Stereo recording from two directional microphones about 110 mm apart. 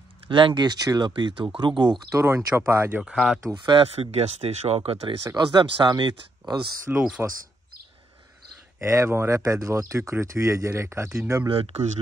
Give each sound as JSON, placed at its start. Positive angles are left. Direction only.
{"t": 0.3, "sound": "speech", "side_deg": -45}
{"t": 2.0, "sound": "speech", "side_deg": -25}
{"t": 3.0, "sound": "speech", "side_deg": -5}
{"t": 3.5, "sound": "speech", "side_deg": -45}
{"t": 5.3, "sound": "speech", "side_deg": -40}
{"t": 6.9, "sound": "speech", "side_deg": -10}
{"t": 8.8, "sound": "speech", "side_deg": -25}
{"t": 11.4, "sound": "speech", "side_deg": -55}